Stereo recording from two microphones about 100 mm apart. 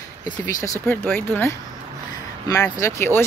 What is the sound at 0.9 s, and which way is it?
Speech, 20° left (ahead or behind).